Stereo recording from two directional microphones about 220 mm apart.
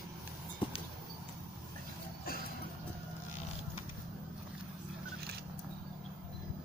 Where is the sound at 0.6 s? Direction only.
20° left (ahead or behind).